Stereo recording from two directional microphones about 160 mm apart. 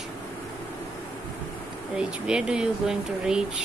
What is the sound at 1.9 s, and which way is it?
Speech, 5° right (ahead or behind).